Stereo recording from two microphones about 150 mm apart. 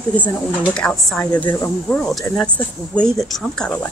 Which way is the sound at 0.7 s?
5° left (ahead or behind).